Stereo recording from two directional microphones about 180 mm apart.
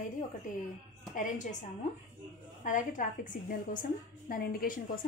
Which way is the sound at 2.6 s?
45° left (ahead or behind).